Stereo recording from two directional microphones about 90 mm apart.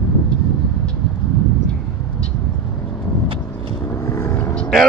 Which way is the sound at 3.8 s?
35° left (ahead or behind).